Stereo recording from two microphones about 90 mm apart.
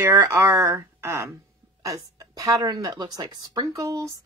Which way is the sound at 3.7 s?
40° right (ahead or behind).